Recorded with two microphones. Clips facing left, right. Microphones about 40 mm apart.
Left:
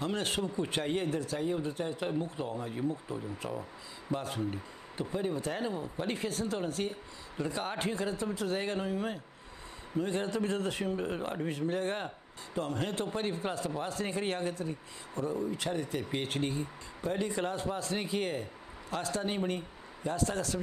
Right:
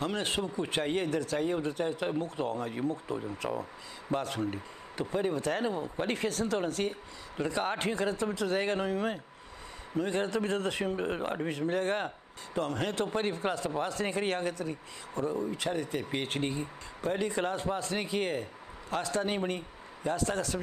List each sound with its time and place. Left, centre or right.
0.0 s a man's voice: right
1.0 s speech: right
2.4 s speech: right
3.1 s speech: right
5.6 s speech: right
6.1 s speech: right
7.4 s a man's voice: right
11.4 s a man's voice: right